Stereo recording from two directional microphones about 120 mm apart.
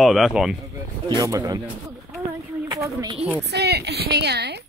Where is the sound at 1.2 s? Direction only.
30° right (ahead or behind).